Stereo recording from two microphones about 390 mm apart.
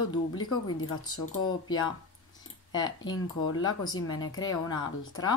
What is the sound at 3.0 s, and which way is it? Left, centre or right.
Speech, left.